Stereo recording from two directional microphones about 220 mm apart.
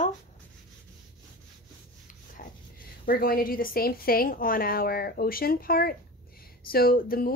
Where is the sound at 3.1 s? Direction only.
40° left (ahead or behind).